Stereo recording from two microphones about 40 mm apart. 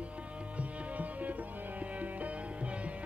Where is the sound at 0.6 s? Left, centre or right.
Right.